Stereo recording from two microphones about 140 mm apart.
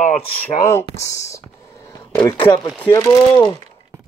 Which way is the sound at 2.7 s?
15° left (ahead or behind).